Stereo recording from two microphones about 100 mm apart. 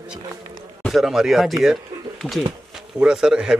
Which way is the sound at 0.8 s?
Centre (ahead or behind).